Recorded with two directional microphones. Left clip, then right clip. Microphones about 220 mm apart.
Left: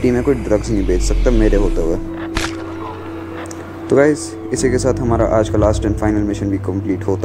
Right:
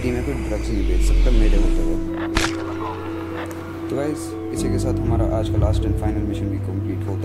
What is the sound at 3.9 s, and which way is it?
Speech, 25° left (ahead or behind).